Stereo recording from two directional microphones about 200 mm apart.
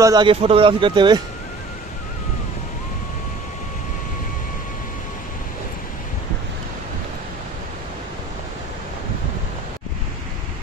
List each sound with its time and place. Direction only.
0.0 s speech: 20° right (ahead or behind)